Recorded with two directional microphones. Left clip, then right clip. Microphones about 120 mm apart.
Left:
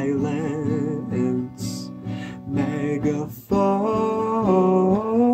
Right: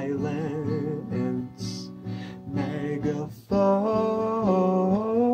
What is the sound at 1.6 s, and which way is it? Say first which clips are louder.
Music: left 4 dB; 50° left (ahead or behind).